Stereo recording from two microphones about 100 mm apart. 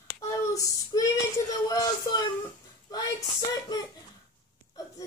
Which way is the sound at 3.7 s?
40° left (ahead or behind).